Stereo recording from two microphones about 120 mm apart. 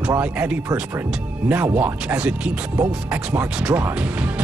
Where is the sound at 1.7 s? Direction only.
15° right (ahead or behind).